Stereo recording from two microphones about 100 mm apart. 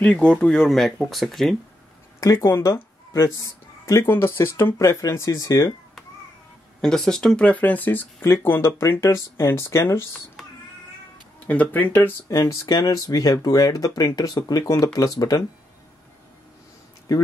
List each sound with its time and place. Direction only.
0.0 s speech: 10° left (ahead or behind)
2.1 s speech: 35° left (ahead or behind)
6.8 s speech: 5° left (ahead or behind); by 10.2 s 25° left (ahead or behind)
11.3 s speech: 15° left (ahead or behind)
12.3 s speech: 35° left (ahead or behind)